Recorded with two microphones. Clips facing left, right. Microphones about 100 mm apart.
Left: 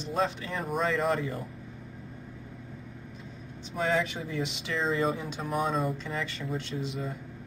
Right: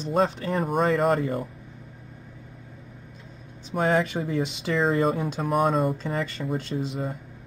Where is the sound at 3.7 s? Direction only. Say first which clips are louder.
Right 5 dB; 55° right (ahead or behind).